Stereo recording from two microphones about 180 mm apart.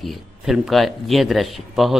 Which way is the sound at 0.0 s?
Centre (ahead or behind).